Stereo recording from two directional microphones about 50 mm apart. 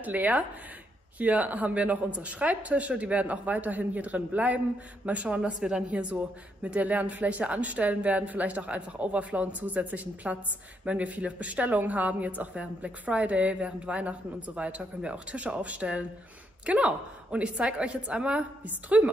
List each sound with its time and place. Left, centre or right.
0.0 s speech: right